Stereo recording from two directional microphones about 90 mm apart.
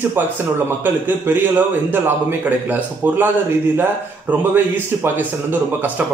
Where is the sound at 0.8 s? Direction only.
20° right (ahead or behind).